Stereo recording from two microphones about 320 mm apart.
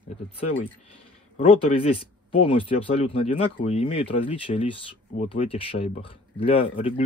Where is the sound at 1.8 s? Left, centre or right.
Centre.